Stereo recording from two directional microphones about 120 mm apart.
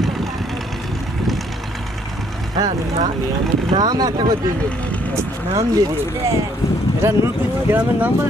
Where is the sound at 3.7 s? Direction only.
35° right (ahead or behind).